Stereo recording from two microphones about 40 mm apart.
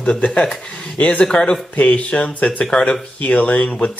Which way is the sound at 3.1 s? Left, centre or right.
Left.